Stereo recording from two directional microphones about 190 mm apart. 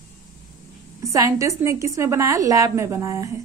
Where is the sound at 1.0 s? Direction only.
15° right (ahead or behind).